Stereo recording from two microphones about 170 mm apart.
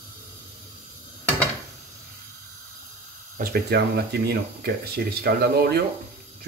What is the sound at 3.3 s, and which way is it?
Speech, 60° right (ahead or behind).